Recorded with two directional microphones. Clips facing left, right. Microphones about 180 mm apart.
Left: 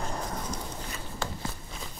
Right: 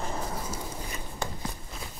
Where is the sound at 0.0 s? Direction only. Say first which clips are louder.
Even; 5° right (ahead or behind).